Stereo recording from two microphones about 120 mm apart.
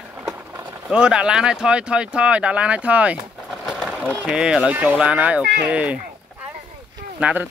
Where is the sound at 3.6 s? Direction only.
Centre (ahead or behind).